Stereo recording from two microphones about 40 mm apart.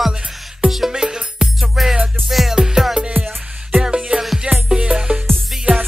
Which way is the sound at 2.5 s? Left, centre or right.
Centre.